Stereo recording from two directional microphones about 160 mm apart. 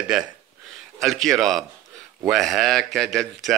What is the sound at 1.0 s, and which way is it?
Speech, centre (ahead or behind).